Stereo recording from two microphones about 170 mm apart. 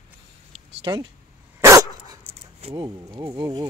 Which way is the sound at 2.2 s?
35° right (ahead or behind).